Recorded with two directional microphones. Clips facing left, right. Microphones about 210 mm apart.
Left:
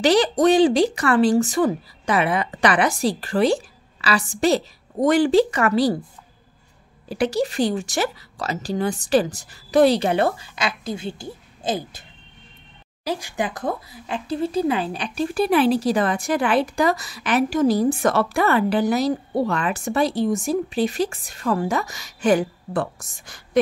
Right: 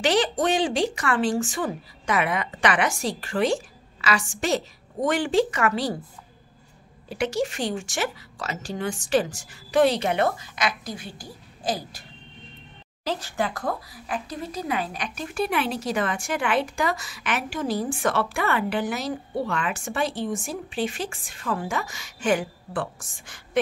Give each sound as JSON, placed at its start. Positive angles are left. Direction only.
{"t": 0.0, "sound": "speech", "side_deg": 35}
{"t": 7.1, "sound": "speech", "side_deg": 35}
{"t": 13.0, "sound": "speech", "side_deg": 10}